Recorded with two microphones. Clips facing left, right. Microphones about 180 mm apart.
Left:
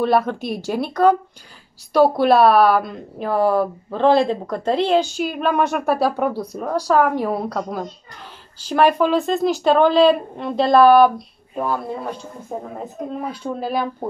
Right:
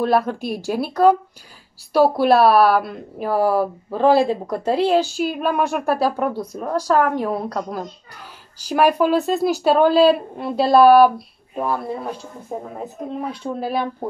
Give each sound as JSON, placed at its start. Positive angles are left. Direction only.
{"t": 0.0, "sound": "speech", "side_deg": 0}
{"t": 8.5, "sound": "speech", "side_deg": -10}